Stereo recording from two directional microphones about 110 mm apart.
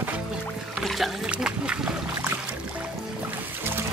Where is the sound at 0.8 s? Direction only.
Centre (ahead or behind).